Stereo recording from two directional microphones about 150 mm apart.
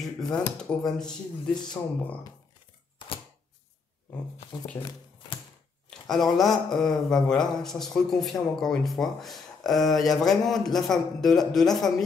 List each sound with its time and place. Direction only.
0.0 s speech: 5° left (ahead or behind)
5.9 s speech: centre (ahead or behind)